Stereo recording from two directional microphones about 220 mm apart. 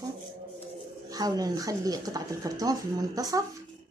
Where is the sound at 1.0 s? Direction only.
15° right (ahead or behind).